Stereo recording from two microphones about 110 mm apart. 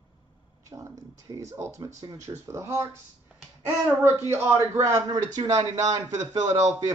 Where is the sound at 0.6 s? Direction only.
30° right (ahead or behind).